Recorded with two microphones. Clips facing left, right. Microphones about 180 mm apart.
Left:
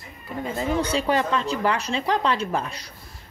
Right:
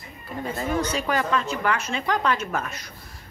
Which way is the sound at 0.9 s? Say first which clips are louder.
Left 2 dB; 30° left (ahead or behind).